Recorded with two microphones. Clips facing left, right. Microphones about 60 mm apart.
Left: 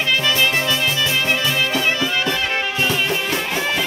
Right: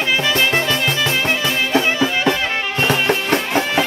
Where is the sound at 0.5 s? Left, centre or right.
Right.